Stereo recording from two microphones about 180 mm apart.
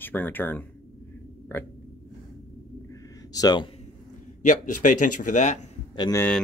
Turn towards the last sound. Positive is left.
turn(degrees=25)  # may be behind; listen again after turning